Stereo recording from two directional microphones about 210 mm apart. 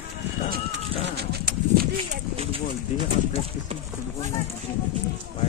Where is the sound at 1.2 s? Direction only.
50° right (ahead or behind).